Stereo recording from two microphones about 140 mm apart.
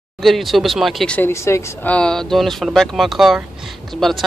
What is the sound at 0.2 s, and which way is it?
Speech, centre (ahead or behind).